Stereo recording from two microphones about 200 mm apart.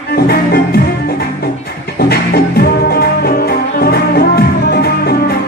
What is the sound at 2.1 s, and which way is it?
Music, 50° left (ahead or behind).